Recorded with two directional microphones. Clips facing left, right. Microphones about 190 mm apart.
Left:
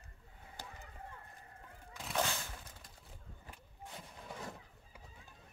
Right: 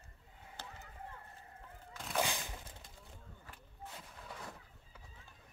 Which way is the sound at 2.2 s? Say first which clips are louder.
Right 1 dB; 15° right (ahead or behind).